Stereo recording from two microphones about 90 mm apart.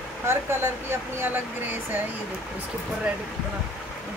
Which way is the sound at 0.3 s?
25° right (ahead or behind).